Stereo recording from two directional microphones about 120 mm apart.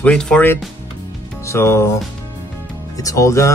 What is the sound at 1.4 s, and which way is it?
Speech, 25° left (ahead or behind).